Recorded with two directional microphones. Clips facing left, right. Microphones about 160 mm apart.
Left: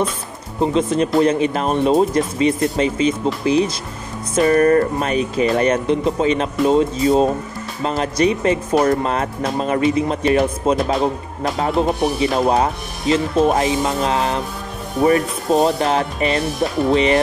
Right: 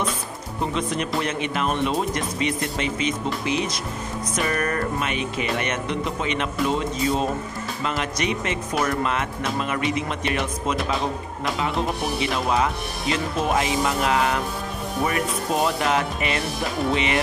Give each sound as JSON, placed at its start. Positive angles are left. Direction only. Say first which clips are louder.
{"t": 0.6, "sound": "speech", "louder": "left 9 dB", "side_deg": 30}